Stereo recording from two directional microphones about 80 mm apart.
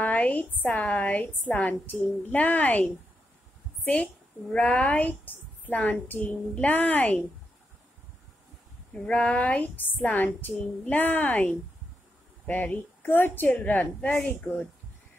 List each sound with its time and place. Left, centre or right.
0.0 s a woman's voice: centre
9.0 s a woman's voice: centre